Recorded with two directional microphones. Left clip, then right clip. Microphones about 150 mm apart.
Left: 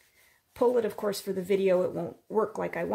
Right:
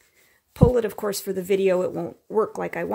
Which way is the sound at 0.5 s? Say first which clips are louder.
Right 4 dB; 40° right (ahead or behind).